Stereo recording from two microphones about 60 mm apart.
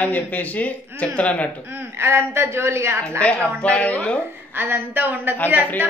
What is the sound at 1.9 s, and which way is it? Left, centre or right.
A woman's voice, right.